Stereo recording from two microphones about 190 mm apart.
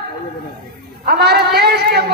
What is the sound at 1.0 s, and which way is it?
Speech, 60° right (ahead or behind).